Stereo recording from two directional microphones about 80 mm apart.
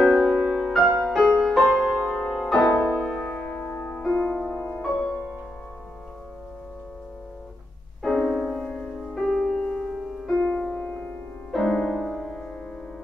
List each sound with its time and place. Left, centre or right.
0.0 s music: centre
3.2 s piano: left
4.0 s music: centre
4.5 s music: left
8.0 s music: centre